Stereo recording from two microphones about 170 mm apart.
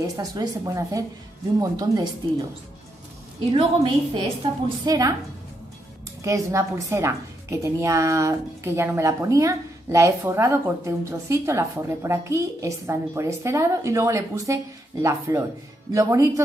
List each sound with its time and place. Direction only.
0.0 s a woman's voice: 20° right (ahead or behind)
3.5 s a woman's voice: 30° right (ahead or behind)
6.2 s a woman's voice: 20° right (ahead or behind)